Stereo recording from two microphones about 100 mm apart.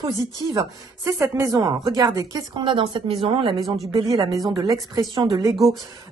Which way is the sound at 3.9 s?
35° right (ahead or behind).